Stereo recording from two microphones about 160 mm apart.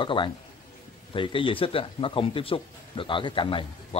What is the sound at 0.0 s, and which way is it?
Speech, 30° left (ahead or behind).